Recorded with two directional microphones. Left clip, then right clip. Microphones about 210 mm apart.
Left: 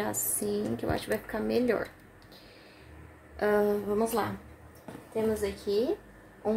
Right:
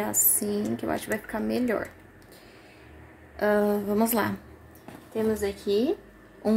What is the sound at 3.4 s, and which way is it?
Speech, 15° right (ahead or behind).